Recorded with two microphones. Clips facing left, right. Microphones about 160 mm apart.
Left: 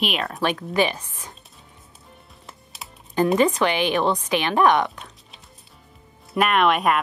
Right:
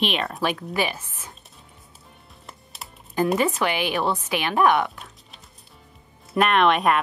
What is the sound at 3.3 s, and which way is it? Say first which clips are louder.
Speech: left 3 dB; 10° right (ahead or behind).